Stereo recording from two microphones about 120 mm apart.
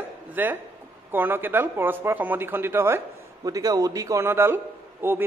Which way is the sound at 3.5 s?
30° right (ahead or behind).